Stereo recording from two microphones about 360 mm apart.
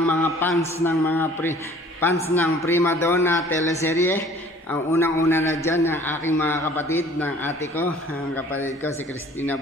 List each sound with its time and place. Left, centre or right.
0.0 s a man's voice: centre